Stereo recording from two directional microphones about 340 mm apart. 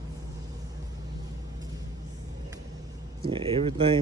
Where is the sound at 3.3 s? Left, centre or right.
Centre.